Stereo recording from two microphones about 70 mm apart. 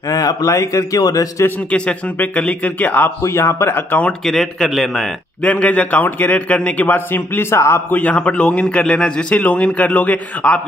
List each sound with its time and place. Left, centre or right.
0.1 s speech: left
1.7 s a man's voice: centre
3.3 s a man's voice: left
4.2 s a man's voice: centre
5.4 s a man's voice: left
7.9 s a man's voice: left